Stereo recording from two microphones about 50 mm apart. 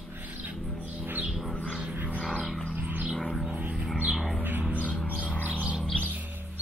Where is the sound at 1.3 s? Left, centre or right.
Centre.